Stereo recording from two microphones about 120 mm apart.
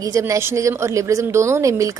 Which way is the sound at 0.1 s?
25° right (ahead or behind).